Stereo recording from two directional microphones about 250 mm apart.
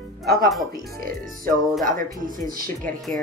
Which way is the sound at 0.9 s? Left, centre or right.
Right.